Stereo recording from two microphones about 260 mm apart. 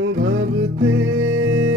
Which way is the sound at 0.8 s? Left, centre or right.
Right.